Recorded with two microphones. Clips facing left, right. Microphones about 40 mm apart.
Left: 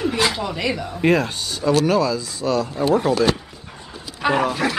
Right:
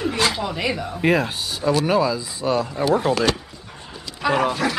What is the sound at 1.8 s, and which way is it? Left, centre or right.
Speech, centre.